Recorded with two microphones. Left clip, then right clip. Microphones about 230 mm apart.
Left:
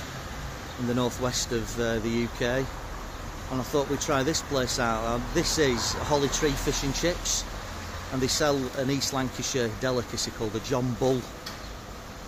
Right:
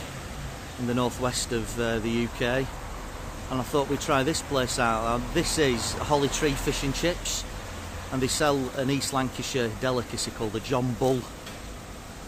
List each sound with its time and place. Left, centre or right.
0.9 s speech: centre
8.2 s speech: centre